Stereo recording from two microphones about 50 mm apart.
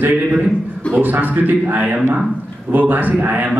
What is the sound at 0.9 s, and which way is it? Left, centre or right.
A man's voice, right.